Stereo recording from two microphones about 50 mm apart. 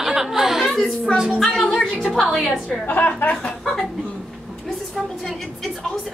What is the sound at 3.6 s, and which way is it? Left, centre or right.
Chuckle, centre.